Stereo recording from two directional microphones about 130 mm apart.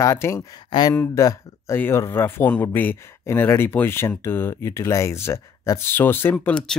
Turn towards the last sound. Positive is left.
turn(degrees=10)  # may be behind; listen again after turning